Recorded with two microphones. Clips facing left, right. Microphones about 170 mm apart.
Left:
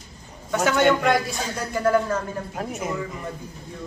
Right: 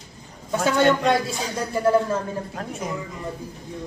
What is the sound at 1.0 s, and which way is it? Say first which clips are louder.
Speech: even; 25° right (ahead or behind).